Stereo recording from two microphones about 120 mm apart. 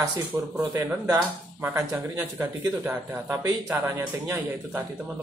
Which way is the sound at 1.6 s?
20° right (ahead or behind).